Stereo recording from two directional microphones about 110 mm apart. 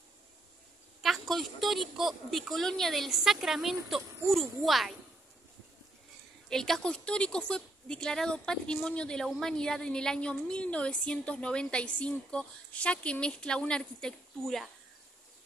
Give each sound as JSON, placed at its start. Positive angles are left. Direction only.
{"t": 1.0, "sound": "a woman's voice", "side_deg": 0}
{"t": 6.5, "sound": "a woman's voice", "side_deg": 5}